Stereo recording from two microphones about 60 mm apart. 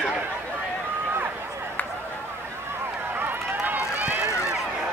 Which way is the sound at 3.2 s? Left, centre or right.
Right.